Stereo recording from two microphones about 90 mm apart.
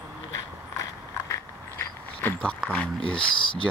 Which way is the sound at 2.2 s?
15° left (ahead or behind).